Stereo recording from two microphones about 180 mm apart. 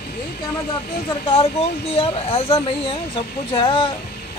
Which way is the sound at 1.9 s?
30° left (ahead or behind).